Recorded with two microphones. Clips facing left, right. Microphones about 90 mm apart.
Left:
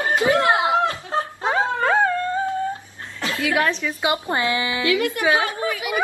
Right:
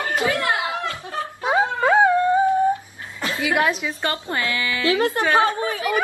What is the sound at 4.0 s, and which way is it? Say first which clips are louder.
Speech: left 5 dB; 20° left (ahead or behind).